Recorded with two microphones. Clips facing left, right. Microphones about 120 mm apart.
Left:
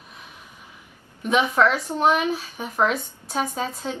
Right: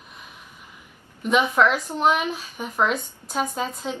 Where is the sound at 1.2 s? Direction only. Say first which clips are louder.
Even; centre (ahead or behind).